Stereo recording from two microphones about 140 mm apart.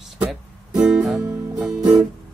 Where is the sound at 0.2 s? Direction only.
5° right (ahead or behind).